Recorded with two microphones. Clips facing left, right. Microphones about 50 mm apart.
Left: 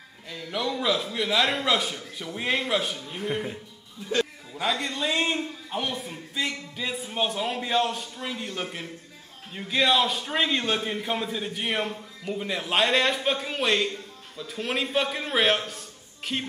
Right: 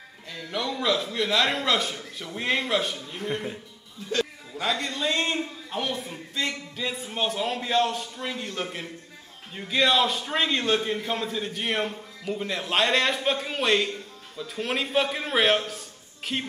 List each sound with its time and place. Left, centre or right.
0.3 s a man's voice: centre